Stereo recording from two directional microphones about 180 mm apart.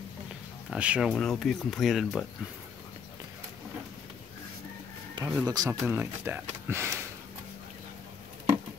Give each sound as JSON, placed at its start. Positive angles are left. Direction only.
{"t": 0.7, "sound": "speech", "side_deg": -5}
{"t": 5.1, "sound": "a sound", "side_deg": -15}
{"t": 5.5, "sound": "speech", "side_deg": -20}